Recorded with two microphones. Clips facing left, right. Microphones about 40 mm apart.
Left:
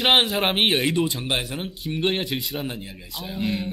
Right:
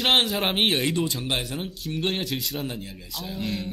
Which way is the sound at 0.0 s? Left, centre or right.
Centre.